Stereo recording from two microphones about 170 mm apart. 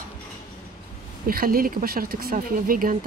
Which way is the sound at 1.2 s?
60° right (ahead or behind).